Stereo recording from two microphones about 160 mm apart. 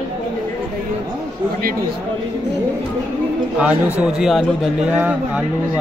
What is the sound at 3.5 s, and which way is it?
A man's voice, 10° right (ahead or behind).